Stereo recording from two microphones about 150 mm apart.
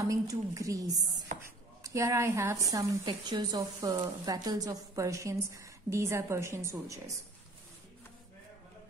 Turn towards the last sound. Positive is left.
turn(degrees=-20)  # may be behind; listen again after turning